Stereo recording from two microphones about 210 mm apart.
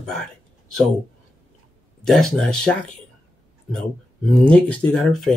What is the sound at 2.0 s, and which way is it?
Speech, centre (ahead or behind).